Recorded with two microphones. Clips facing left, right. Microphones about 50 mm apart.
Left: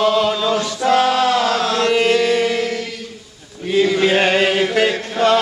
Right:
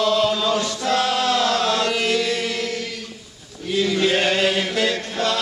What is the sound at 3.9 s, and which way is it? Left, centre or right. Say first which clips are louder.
Chant: left 4 dB; left.